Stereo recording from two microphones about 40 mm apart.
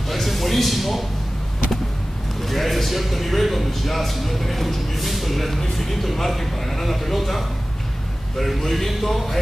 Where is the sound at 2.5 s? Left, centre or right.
Centre.